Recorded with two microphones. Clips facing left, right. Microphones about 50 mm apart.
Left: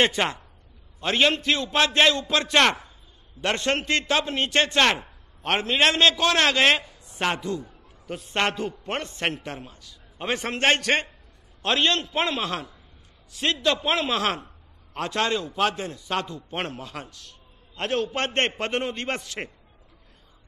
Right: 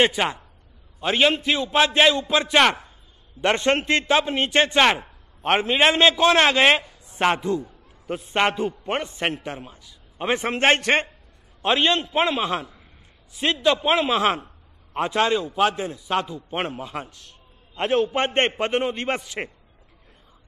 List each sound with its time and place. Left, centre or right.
0.0 s a man's voice: centre
3.3 s a man's voice: right